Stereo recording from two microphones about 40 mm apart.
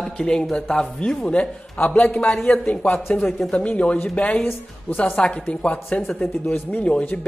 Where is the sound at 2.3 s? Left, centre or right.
Centre.